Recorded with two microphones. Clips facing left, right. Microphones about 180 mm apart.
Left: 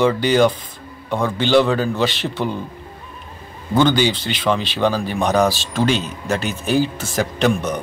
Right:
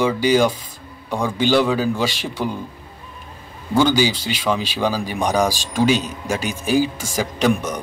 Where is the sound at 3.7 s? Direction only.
10° right (ahead or behind).